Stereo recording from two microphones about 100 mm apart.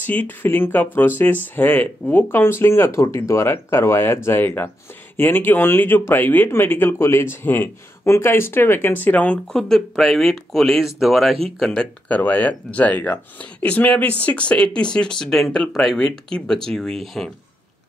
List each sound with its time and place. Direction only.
0.0 s speech: 15° left (ahead or behind); by 11.3 s centre (ahead or behind)
11.6 s speech: 10° left (ahead or behind)